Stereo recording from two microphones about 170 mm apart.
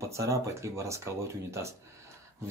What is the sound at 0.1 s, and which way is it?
Speech, 15° right (ahead or behind).